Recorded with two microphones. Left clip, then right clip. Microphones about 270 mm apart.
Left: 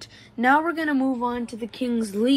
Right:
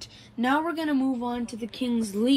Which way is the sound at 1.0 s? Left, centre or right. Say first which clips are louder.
Left 4 dB; centre.